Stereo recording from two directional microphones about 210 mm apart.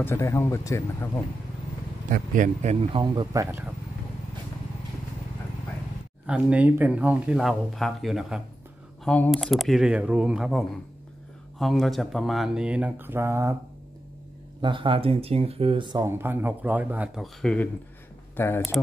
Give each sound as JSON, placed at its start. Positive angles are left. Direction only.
{"t": 0.0, "sound": "speech", "side_deg": 15}
{"t": 2.0, "sound": "speech", "side_deg": -40}
{"t": 3.4, "sound": "speech", "side_deg": -10}
{"t": 6.2, "sound": "speech", "side_deg": -5}
{"t": 14.6, "sound": "speech", "side_deg": -25}